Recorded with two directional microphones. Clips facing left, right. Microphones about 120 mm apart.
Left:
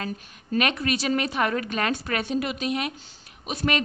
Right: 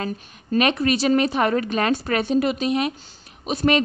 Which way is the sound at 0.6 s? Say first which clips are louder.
Right 5 dB; 30° right (ahead or behind).